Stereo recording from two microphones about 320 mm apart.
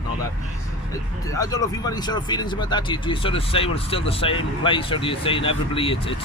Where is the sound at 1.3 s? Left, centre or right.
Centre.